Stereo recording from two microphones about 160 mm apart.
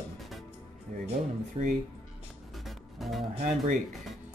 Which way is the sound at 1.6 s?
35° right (ahead or behind).